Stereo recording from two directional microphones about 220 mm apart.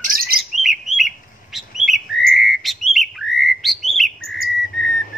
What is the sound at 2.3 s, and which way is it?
Bird, centre (ahead or behind).